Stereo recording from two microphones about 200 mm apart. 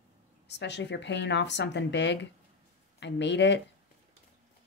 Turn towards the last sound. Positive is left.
turn(degrees=60)  # may be behind; listen again after turning